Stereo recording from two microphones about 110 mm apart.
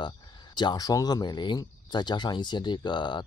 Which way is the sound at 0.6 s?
40° left (ahead or behind).